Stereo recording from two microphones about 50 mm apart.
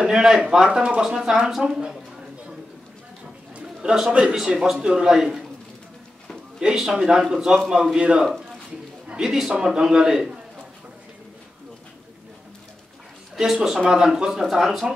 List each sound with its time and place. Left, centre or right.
0.0 s a man's voice: centre
3.8 s a man's voice: centre
4.1 s speech: right
4.4 s a man's voice: centre
5.1 s a man's voice: centre
6.6 s a man's voice: centre
9.0 s a sound: right
9.7 s a man's voice: centre
13.4 s a man's voice: centre